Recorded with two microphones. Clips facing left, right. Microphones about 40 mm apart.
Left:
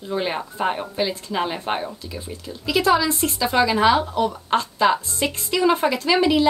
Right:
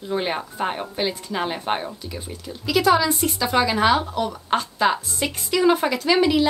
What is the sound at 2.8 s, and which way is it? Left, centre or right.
Speech, centre.